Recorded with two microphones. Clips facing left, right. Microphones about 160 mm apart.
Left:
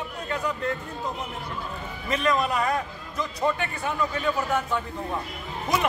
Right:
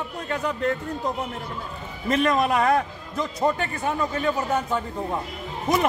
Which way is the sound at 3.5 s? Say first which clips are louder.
Right 2 dB; 40° right (ahead or behind).